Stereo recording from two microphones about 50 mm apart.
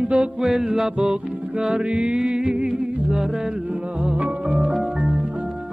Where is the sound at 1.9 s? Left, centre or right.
Centre.